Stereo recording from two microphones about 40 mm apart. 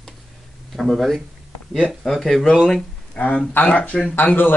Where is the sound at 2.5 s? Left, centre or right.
Centre.